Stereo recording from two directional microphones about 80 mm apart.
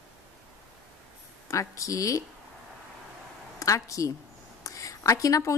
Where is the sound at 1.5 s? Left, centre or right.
Left.